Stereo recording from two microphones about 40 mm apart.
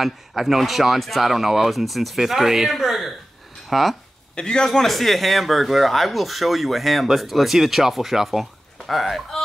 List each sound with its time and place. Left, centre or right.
0.0 s speech: centre
4.4 s a man's voice: centre
4.6 s speech: centre